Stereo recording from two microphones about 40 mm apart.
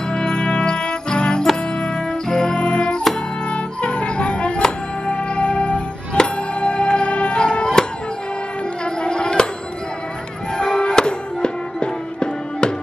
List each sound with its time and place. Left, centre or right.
0.1 s music: left
4.6 s music: centre
9.0 s music: left
10.6 s music: left